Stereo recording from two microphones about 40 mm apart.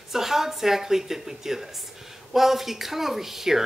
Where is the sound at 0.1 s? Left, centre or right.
Centre.